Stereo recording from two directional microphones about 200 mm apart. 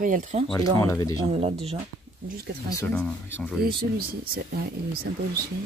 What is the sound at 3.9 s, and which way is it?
Speech, 50° right (ahead or behind).